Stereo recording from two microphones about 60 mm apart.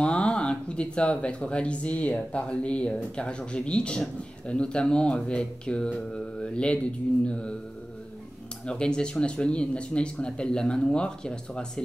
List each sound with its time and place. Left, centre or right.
0.0 s speech: centre
8.6 s speech: centre